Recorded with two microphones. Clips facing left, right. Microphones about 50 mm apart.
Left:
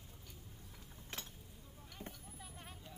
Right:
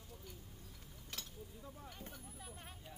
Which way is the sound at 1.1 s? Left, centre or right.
Left.